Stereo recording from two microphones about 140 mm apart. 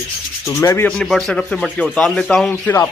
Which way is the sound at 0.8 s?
Centre (ahead or behind).